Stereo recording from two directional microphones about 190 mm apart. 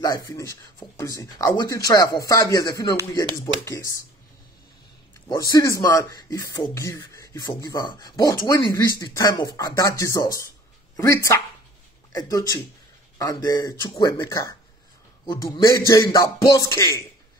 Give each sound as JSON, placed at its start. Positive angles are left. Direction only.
{"t": 0.0, "sound": "speech", "side_deg": 20}
{"t": 5.3, "sound": "speech", "side_deg": 20}